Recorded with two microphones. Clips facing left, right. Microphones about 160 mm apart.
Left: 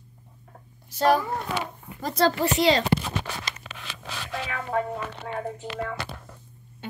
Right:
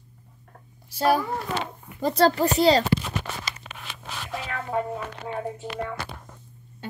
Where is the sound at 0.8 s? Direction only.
10° right (ahead or behind).